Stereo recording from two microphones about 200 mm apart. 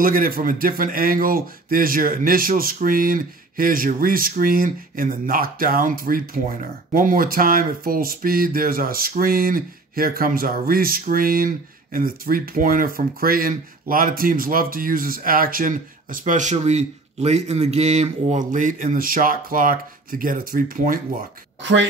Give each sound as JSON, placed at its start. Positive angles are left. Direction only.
{"t": 0.0, "sound": "speech", "side_deg": -45}
{"t": 21.5, "sound": "speech", "side_deg": -65}